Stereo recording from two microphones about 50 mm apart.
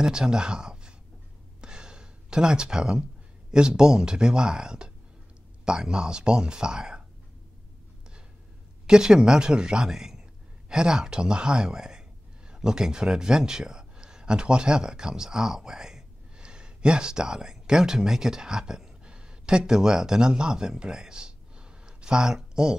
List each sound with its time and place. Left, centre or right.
0.0 s speech: centre
1.6 s gasp: centre
3.5 s speech: centre
8.8 s speech: centre